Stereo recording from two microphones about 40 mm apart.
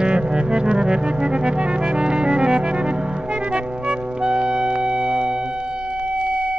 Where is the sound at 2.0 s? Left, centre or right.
Right.